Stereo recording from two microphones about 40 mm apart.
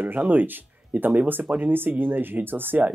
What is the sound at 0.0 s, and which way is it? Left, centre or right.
Speech, right.